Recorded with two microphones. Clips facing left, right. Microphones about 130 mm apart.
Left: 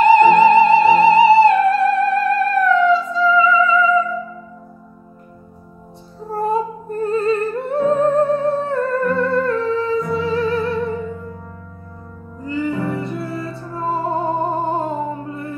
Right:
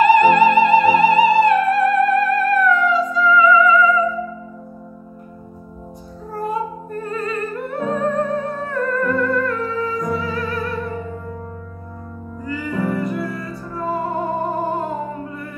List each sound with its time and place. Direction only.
0.0 s music: 25° left (ahead or behind)
6.3 s music: 30° left (ahead or behind)
12.4 s music: 25° left (ahead or behind)